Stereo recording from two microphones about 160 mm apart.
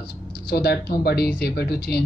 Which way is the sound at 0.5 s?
75° left (ahead or behind).